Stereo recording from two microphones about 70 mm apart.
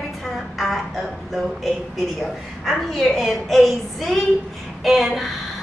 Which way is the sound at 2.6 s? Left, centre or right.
Centre.